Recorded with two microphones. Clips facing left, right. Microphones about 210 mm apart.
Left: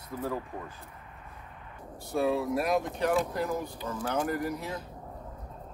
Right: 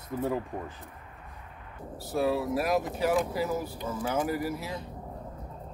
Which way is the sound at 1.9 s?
Centre (ahead or behind).